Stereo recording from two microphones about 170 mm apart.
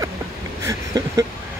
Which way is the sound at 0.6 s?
20° right (ahead or behind).